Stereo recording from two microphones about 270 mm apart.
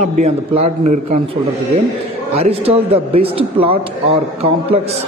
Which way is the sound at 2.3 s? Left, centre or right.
Right.